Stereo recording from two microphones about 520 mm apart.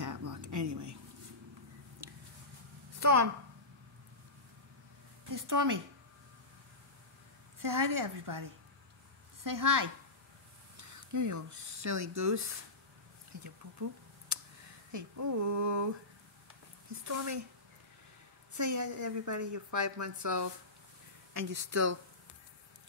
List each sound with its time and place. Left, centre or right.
0.0 s a sound: right
2.0 s a sound: right
5.3 s a woman's voice: right
7.6 s a woman's voice: right
14.9 s a woman's voice: right
16.9 s a woman's voice: right
18.5 s a woman's voice: right